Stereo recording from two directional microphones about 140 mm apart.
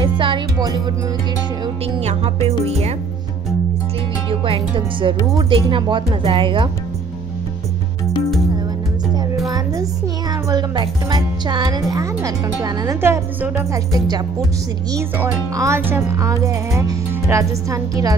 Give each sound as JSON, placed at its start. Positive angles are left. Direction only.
{"t": 0.0, "sound": "speech", "side_deg": -35}
{"t": 2.0, "sound": "speech", "side_deg": -50}
{"t": 4.3, "sound": "speech", "side_deg": -40}
{"t": 10.5, "sound": "speech", "side_deg": -30}
{"t": 15.5, "sound": "speech", "side_deg": -20}